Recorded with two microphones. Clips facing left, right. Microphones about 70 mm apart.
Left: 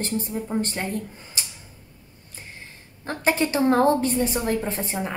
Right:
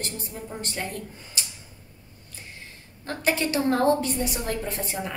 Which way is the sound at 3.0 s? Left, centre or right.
Left.